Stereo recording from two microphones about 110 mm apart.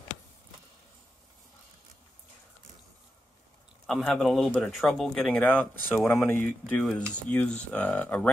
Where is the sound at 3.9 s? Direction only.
5° left (ahead or behind).